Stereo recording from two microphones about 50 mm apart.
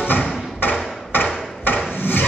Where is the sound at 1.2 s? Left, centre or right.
Left.